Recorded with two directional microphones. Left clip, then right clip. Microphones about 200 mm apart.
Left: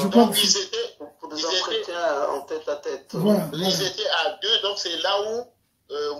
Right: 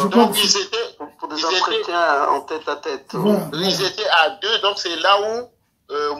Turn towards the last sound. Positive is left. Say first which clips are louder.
# right 6 dB
turn(degrees=-35)  # may be behind; listen again after turning